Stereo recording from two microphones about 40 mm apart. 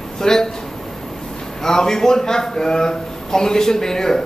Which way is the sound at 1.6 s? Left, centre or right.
Centre.